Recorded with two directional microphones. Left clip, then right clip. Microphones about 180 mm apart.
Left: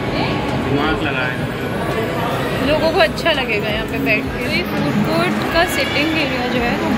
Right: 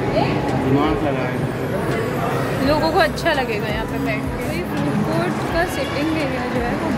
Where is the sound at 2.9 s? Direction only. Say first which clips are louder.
Left 2 dB; 20° right (ahead or behind).